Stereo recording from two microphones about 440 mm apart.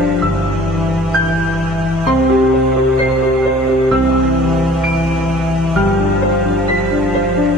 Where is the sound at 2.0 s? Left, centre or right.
Centre.